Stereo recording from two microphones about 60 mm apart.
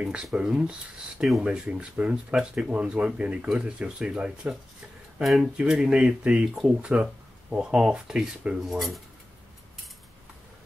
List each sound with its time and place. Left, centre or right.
0.0 s speech: centre
8.7 s speech: centre